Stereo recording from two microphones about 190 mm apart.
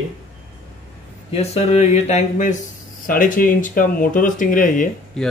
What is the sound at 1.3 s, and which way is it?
Speech, 35° left (ahead or behind).